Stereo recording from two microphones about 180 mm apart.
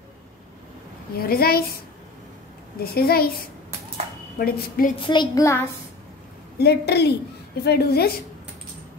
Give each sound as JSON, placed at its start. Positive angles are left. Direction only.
{"t": 1.1, "sound": "a woman's voice", "side_deg": 55}
{"t": 2.8, "sound": "a woman's voice", "side_deg": 60}
{"t": 4.4, "sound": "a woman's voice", "side_deg": 55}
{"t": 5.0, "sound": "a child's voice", "side_deg": 25}
{"t": 6.6, "sound": "a woman's voice", "side_deg": 65}